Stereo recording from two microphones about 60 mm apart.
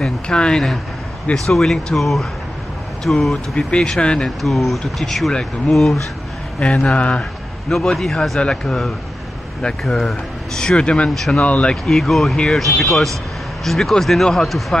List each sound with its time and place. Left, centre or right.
0.0 s speech: centre
3.5 s speech: centre
4.4 s speech: centre
6.6 s speech: centre
7.7 s speech: centre
11.7 s speech: centre